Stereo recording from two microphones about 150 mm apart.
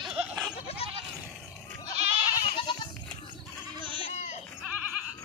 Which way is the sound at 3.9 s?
45° left (ahead or behind).